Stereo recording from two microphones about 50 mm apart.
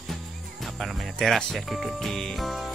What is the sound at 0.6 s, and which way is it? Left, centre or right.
Music, centre.